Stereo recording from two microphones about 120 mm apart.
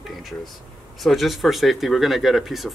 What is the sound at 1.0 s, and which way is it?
Speech, centre (ahead or behind).